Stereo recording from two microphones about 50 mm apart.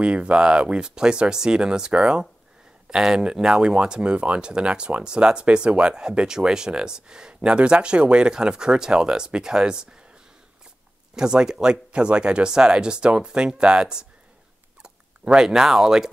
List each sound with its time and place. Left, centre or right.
0.0 s speech: right
11.1 s speech: centre
14.8 s fowl: centre